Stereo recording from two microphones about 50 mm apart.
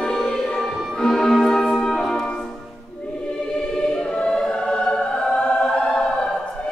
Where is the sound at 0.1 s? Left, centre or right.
Centre.